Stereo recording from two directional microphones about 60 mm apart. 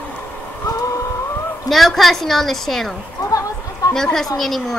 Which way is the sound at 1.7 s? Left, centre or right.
Centre.